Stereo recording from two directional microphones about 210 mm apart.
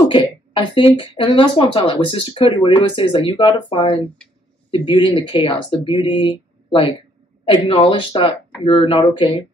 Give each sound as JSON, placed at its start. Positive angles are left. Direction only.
{"t": 0.0, "sound": "speech", "side_deg": 25}